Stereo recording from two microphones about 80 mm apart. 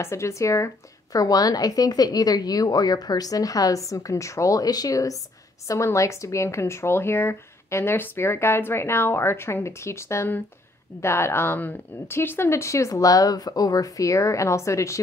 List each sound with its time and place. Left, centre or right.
0.0 s a woman's voice: left